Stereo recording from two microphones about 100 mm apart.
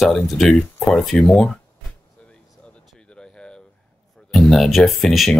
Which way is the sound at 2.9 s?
10° left (ahead or behind).